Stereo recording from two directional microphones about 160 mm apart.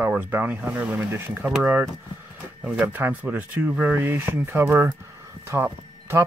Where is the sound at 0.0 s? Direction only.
10° right (ahead or behind).